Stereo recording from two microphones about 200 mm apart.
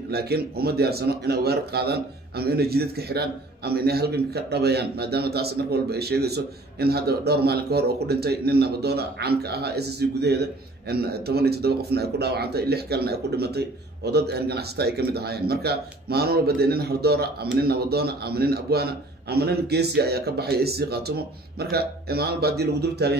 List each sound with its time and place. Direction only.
0.1 s a man's voice: 50° right (ahead or behind)